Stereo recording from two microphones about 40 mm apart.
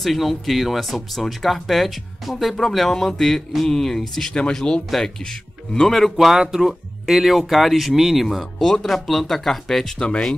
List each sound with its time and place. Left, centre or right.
0.0 s speech: centre
6.1 s speech: centre
8.3 s speech: centre
9.9 s speech: left